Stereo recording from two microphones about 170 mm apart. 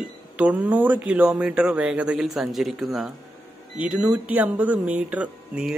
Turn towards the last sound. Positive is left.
turn(degrees=-5)  # may be behind; listen again after turning